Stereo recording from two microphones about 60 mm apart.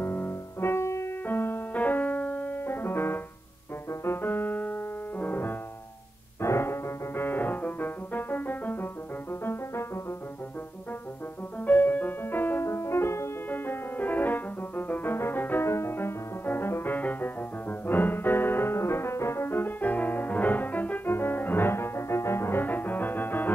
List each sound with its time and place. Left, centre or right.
0.0 s music: left
1.2 s music: left
5.2 s piano: left
6.4 s music: left
11.6 s music: left
12.6 s music: left
13.5 s music: left
15.6 s music: left
21.1 s music: left